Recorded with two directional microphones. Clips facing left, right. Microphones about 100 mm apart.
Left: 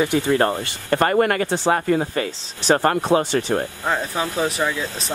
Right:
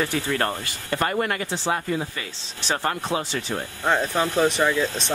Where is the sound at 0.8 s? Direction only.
50° left (ahead or behind).